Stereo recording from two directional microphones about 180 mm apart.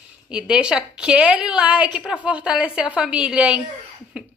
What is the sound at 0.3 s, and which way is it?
A woman's voice, 5° right (ahead or behind).